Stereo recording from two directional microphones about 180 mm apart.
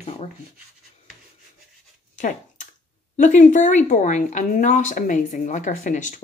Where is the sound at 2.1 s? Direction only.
45° left (ahead or behind).